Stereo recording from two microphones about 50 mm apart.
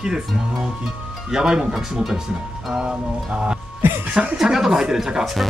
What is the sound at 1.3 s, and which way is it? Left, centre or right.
Speech, centre.